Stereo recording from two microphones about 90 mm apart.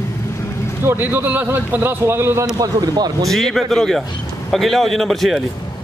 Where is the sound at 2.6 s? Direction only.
45° right (ahead or behind).